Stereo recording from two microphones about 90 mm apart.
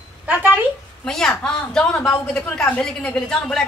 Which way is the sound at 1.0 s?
5° left (ahead or behind).